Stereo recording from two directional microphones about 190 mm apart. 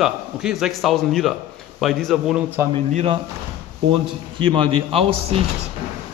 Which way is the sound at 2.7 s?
30° right (ahead or behind).